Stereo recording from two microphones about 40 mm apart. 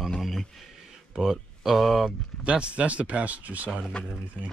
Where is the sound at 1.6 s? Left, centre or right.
Centre.